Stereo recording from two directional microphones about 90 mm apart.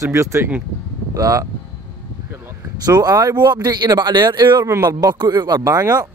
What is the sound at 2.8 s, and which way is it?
Speech, 45° right (ahead or behind).